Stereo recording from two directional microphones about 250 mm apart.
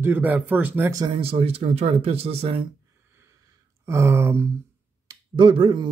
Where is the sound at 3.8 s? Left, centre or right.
Centre.